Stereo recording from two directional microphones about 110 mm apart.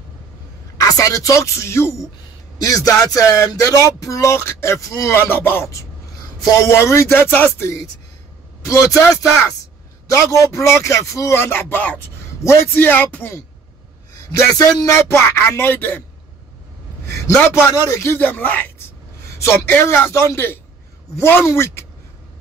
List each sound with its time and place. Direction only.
0.7 s a man's voice: 30° left (ahead or behind)
2.6 s music: 30° left (ahead or behind)
4.0 s a man's voice: 30° left (ahead or behind)
14.1 s a man's voice: 30° left (ahead or behind)
17.0 s a sound: 25° left (ahead or behind)
17.4 s a man's voice: 20° left (ahead or behind)